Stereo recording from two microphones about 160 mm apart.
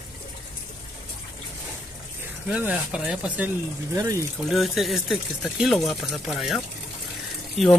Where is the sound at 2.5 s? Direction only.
5° right (ahead or behind).